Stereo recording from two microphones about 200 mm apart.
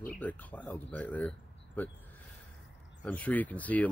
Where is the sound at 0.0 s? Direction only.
5° left (ahead or behind).